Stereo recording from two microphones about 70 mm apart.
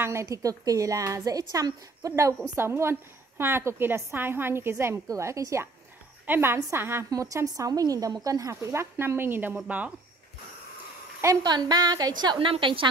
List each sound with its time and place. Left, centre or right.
0.0 s a woman's voice: right
2.5 s a woman's voice: right
5.0 s a woman's voice: right
6.2 s a woman's voice: right
7.4 s a woman's voice: right
11.4 s a woman's voice: right